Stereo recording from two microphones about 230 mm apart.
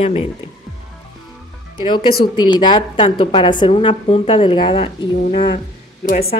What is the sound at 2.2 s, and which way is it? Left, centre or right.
Speech, centre.